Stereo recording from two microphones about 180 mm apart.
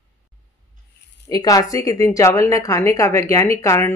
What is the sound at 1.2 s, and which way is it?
Speech, 20° left (ahead or behind).